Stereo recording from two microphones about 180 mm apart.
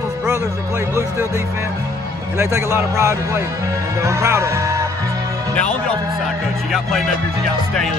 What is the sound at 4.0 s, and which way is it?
Speech, 15° right (ahead or behind).